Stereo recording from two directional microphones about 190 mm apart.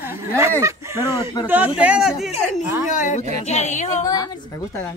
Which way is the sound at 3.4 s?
35° left (ahead or behind).